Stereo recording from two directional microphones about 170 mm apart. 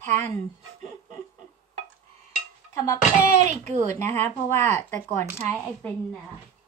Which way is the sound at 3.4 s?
40° right (ahead or behind).